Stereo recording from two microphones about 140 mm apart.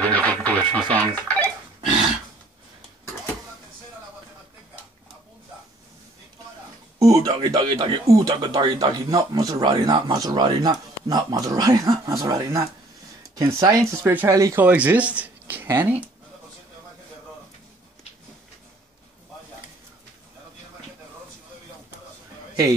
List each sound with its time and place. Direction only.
0.0 s radio: 10° left (ahead or behind)
7.0 s a man's voice: 25° right (ahead or behind)